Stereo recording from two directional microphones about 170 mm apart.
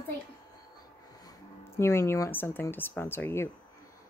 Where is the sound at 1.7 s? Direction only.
15° left (ahead or behind).